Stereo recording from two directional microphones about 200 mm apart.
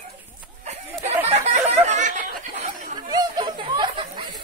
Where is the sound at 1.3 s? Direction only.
35° right (ahead or behind).